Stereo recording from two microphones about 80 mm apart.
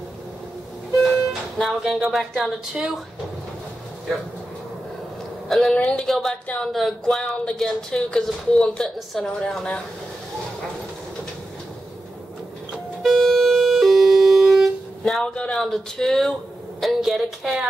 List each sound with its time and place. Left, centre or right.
1.6 s speech: centre
5.5 s speech: centre
6.4 s speech: centre
6.7 s speech: centre
13.0 s music: centre
15.0 s speech: centre